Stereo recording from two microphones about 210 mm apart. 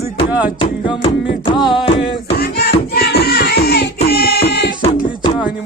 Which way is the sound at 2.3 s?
50° left (ahead or behind).